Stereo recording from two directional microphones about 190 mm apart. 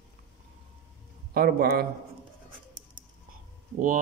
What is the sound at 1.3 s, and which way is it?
Speech, 50° right (ahead or behind).